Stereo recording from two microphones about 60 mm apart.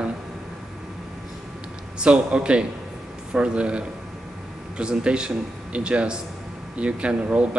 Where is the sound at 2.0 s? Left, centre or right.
Centre.